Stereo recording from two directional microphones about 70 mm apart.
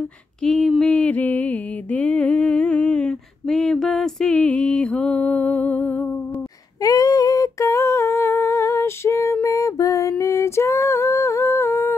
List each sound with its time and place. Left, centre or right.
0.4 s a sound: centre
0.9 s music: left
4.4 s music: centre
6.8 s humming: left